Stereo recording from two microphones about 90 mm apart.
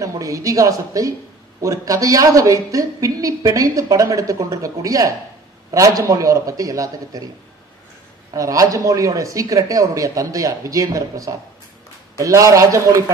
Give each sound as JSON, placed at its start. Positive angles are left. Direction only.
{"t": 0.0, "sound": "a woman's voice", "side_deg": -35}
{"t": 8.3, "sound": "a woman's voice", "side_deg": -40}